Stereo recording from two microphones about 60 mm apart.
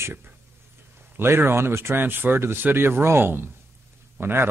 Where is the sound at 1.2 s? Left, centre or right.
Right.